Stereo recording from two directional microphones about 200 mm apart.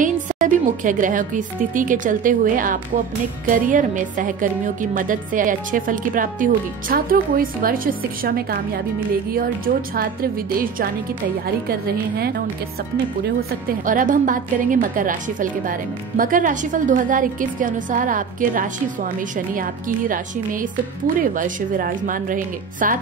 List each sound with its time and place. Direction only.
0.0 s a woman's voice: 40° right (ahead or behind)
13.8 s a woman's voice: 40° right (ahead or behind)